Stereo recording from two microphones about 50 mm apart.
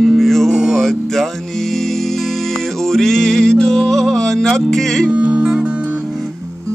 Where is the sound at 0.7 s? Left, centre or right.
Centre.